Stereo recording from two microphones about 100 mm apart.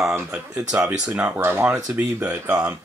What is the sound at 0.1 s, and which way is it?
Speech, 15° right (ahead or behind).